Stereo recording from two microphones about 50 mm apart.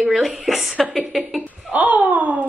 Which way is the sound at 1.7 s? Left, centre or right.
Right.